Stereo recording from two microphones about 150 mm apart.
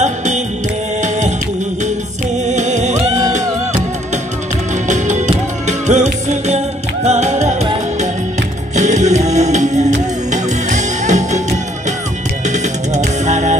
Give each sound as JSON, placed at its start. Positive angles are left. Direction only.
{"t": 0.0, "sound": "music", "side_deg": -50}
{"t": 2.4, "sound": "music", "side_deg": -50}
{"t": 4.8, "sound": "music", "side_deg": -55}
{"t": 8.7, "sound": "music", "side_deg": -50}